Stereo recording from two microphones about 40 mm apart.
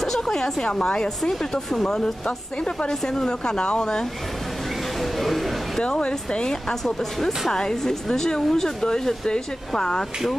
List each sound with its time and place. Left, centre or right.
0.2 s speech: centre
2.2 s a woman's voice: left
5.2 s speech: centre
5.9 s a woman's voice: left
6.7 s speech: centre